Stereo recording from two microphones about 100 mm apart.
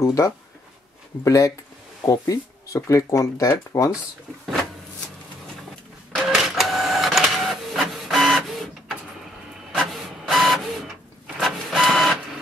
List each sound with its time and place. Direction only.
0.0 s speech: 30° left (ahead or behind)
6.3 s printer: centre (ahead or behind)
9.9 s printer: centre (ahead or behind)